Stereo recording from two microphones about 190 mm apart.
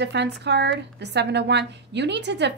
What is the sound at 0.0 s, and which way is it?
A woman's voice, 65° right (ahead or behind).